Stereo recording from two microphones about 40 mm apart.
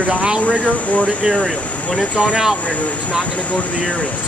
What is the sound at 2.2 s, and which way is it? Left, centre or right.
Speech, right.